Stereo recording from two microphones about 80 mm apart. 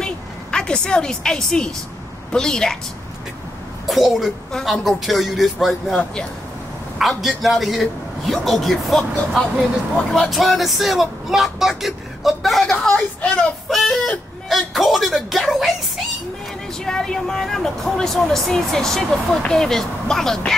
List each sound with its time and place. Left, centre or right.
0.0 s a woman's voice: centre
3.8 s speech: centre
7.0 s speech: centre
12.9 s a woman's voice: centre
13.7 s speech: centre
16.8 s speech: centre